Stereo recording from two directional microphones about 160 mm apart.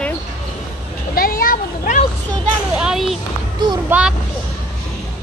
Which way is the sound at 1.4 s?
55° left (ahead or behind).